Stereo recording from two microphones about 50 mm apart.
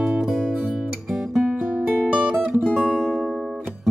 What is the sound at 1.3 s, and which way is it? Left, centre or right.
Music, centre.